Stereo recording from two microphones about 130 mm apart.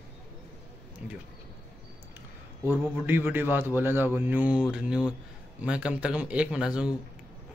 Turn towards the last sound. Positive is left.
turn(degrees=-5)  # may be behind; listen again after turning